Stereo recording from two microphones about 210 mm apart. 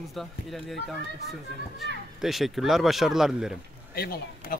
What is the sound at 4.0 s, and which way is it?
Speech, 45° left (ahead or behind).